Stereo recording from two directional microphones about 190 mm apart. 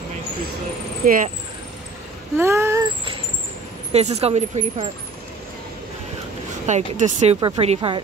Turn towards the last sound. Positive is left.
turn(degrees=-30)  # may be behind; listen again after turning